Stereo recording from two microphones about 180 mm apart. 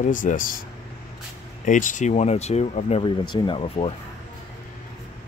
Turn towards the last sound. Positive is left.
turn(degrees=30)  # may be behind; listen again after turning